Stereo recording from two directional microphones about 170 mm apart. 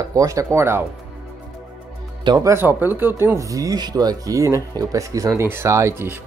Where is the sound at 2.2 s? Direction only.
20° right (ahead or behind).